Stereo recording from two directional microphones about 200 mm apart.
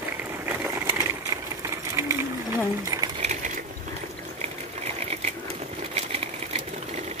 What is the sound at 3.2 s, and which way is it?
Crushing, 40° right (ahead or behind).